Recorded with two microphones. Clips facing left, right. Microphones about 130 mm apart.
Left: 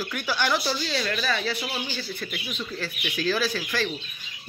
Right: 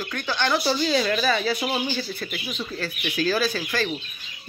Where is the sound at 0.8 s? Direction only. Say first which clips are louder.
Right 6 dB; 10° right (ahead or behind).